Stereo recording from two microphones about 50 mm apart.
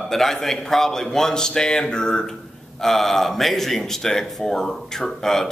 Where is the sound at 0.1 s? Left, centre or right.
Centre.